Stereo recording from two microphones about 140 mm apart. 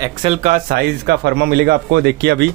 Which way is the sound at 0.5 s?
90° right.